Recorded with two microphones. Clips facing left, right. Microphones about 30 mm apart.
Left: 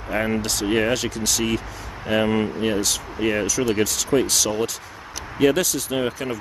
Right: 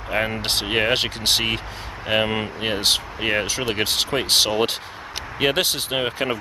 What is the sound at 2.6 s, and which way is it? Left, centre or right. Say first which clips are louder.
Speech: right 1 dB; right.